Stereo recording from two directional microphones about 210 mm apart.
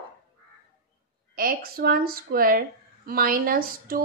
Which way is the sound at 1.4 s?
45° right (ahead or behind).